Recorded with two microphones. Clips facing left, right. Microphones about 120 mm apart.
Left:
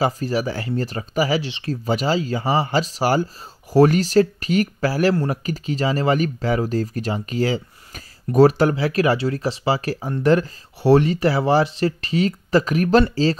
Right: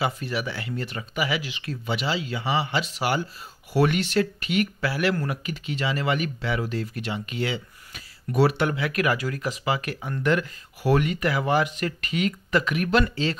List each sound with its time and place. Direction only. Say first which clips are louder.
0.0 s speech: left 6 dB; 40° left (ahead or behind)